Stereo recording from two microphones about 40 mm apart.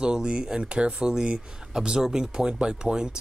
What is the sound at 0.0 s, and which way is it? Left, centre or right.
Speech, right.